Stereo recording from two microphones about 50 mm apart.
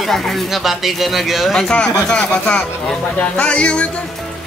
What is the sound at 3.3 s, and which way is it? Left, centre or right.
Speech, left.